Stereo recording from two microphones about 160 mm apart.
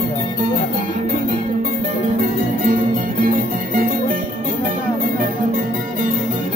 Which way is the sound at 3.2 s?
60° right (ahead or behind).